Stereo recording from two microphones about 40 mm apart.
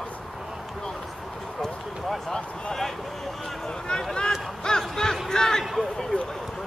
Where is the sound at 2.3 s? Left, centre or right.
Centre.